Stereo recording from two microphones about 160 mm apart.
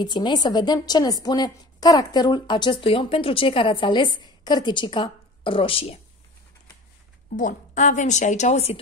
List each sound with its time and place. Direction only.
0.0 s a woman's voice: 30° left (ahead or behind)
7.3 s a woman's voice: 50° left (ahead or behind)